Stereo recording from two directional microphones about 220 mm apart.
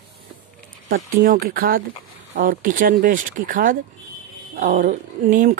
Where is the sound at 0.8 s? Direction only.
40° right (ahead or behind).